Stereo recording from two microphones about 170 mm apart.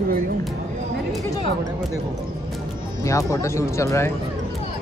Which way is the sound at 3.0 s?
20° left (ahead or behind).